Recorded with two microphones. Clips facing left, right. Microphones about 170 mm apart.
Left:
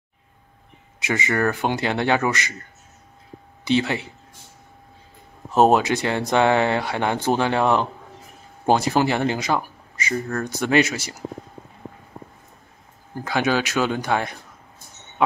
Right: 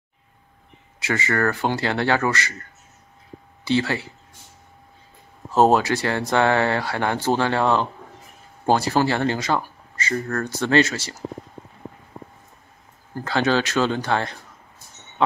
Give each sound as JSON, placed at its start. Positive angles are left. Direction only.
{"t": 1.0, "sound": "speech", "side_deg": 15}
{"t": 3.6, "sound": "speech", "side_deg": 20}
{"t": 5.5, "sound": "speech", "side_deg": 20}
{"t": 13.1, "sound": "speech", "side_deg": 15}